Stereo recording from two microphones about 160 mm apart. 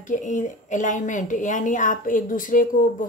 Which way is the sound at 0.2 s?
50° left (ahead or behind).